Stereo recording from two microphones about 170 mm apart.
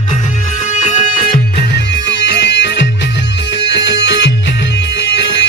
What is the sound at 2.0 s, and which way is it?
Music, 90° left.